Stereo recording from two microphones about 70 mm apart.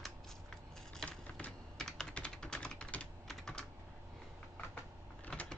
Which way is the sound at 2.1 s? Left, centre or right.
Centre.